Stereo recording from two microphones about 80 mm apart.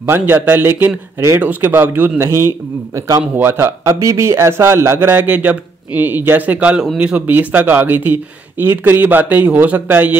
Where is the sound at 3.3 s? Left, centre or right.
Right.